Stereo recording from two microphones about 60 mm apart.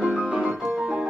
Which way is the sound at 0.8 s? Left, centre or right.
Centre.